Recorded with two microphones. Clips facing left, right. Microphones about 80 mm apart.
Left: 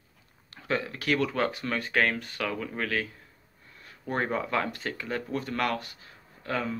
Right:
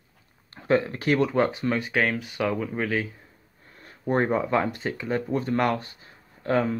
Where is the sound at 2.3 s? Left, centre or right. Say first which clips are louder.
Right 5 dB; centre.